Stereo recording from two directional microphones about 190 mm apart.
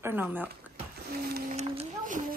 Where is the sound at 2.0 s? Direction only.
45° right (ahead or behind).